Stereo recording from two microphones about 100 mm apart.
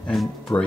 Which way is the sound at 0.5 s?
30° left (ahead or behind).